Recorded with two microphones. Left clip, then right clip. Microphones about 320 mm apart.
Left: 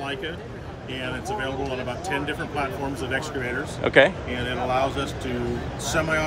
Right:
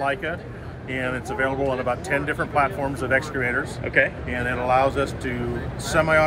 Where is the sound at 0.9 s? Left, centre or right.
Centre.